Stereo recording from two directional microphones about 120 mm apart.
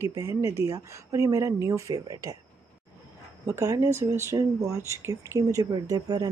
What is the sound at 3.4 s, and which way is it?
Speech, 25° right (ahead or behind).